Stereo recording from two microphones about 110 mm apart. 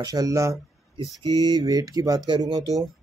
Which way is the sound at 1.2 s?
40° right (ahead or behind).